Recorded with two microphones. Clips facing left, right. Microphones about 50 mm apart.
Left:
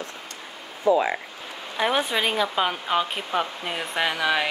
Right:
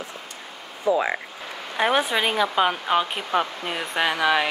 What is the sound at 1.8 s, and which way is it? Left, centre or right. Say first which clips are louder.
Speech: right 2 dB; centre.